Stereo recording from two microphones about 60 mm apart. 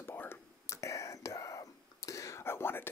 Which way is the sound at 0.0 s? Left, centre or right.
Left.